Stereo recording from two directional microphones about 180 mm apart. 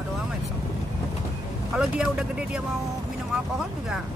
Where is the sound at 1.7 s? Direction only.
5° right (ahead or behind).